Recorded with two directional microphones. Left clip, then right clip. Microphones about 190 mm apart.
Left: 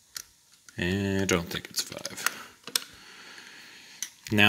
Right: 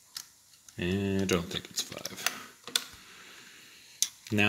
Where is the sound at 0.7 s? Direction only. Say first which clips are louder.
Left 3 dB; 20° left (ahead or behind).